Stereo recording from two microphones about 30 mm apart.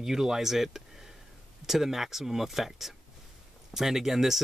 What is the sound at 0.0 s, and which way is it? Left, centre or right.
Speech, centre.